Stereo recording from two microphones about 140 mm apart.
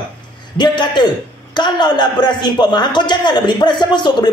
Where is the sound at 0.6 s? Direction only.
30° left (ahead or behind).